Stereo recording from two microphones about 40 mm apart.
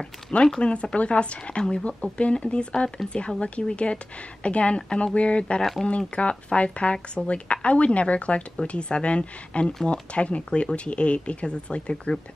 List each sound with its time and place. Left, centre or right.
0.6 s speech: left
1.6 s speech: centre
1.9 s speech: left
5.6 s speech: centre
5.9 s speech: left